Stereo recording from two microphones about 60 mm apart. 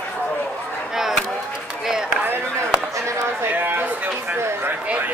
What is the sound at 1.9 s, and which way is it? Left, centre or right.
Run, centre.